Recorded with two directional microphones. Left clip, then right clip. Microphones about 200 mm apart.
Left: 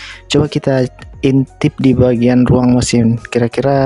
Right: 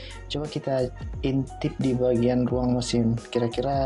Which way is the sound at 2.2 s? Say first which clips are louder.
Left 12 dB; 55° left (ahead or behind).